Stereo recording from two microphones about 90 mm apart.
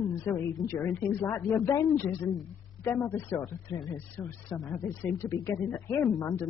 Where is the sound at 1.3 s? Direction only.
20° left (ahead or behind).